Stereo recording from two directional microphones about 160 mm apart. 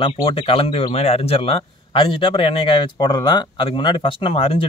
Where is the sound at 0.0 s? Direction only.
35° left (ahead or behind).